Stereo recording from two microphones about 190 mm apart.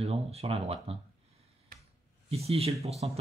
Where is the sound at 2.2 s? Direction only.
30° right (ahead or behind).